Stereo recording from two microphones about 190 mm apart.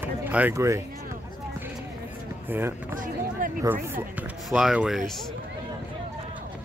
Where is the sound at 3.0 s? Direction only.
45° right (ahead or behind).